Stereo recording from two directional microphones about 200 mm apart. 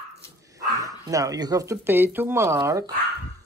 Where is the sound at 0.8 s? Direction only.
15° right (ahead or behind).